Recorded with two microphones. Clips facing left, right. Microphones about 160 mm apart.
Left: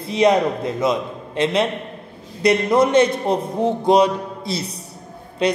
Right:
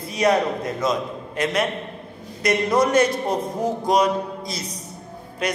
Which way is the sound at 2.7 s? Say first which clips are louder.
Left 2 dB; 25° left (ahead or behind).